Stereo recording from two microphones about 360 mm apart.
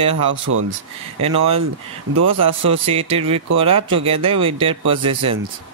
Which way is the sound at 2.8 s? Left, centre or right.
Centre.